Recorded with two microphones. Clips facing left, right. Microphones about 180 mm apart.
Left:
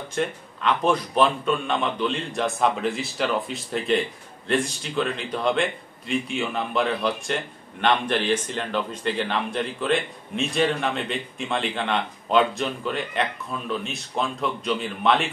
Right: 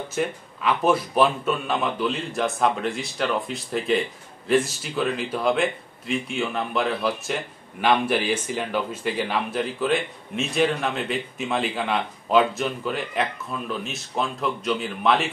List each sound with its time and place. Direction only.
0.1 s speech: 5° right (ahead or behind)